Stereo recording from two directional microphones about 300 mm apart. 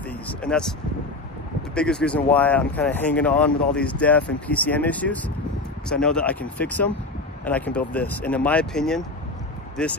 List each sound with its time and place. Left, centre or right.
0.3 s speech: centre
1.8 s speech: centre